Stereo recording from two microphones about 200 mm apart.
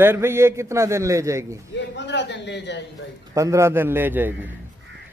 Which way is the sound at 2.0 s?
60° left (ahead or behind).